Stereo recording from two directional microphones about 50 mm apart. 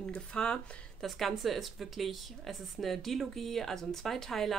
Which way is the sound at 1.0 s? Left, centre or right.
Centre.